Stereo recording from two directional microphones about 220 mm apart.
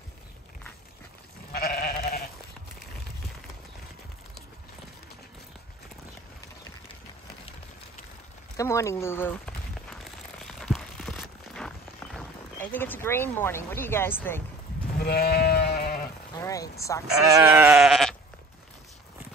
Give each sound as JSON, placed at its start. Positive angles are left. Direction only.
{"t": 1.5, "sound": "goat", "side_deg": 45}
{"t": 8.5, "sound": "speech", "side_deg": 15}
{"t": 10.4, "sound": "a sound", "side_deg": 0}
{"t": 15.0, "sound": "sheep", "side_deg": 45}
{"t": 16.3, "sound": "a sound", "side_deg": 15}
{"t": 17.3, "sound": "sheep", "side_deg": -10}